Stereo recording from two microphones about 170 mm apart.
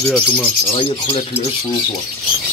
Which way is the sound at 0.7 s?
30° left (ahead or behind).